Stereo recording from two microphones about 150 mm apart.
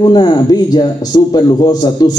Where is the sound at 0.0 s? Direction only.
25° left (ahead or behind).